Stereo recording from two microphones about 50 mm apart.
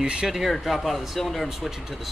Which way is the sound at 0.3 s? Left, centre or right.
Centre.